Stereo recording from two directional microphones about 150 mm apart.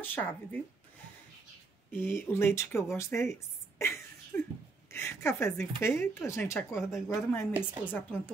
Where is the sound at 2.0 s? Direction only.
15° left (ahead or behind).